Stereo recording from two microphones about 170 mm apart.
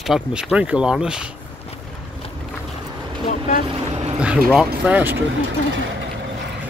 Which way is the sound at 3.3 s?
45° left (ahead or behind).